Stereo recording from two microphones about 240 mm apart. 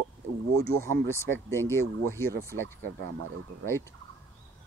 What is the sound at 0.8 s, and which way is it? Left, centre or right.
Speech, centre.